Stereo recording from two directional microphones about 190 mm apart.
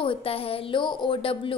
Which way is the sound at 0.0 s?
30° left (ahead or behind).